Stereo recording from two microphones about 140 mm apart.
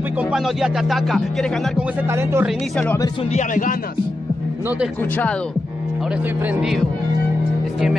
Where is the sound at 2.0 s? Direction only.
15° right (ahead or behind).